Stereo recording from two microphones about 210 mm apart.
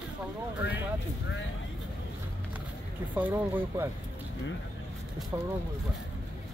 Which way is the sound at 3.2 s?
10° right (ahead or behind).